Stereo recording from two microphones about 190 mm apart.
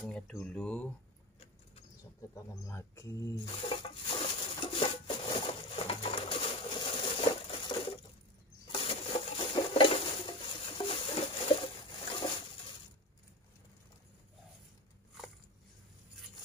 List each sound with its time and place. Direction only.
0.0 s speech: 5° left (ahead or behind)
2.7 s speech: 15° left (ahead or behind)
3.5 s wood: 25° left (ahead or behind)
8.7 s a sound: 30° left (ahead or behind)